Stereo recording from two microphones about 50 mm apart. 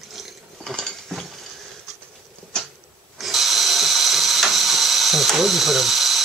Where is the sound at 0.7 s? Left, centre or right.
Centre.